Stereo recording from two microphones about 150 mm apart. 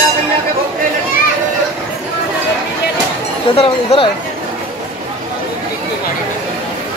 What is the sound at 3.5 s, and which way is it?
Speech, 40° left (ahead or behind).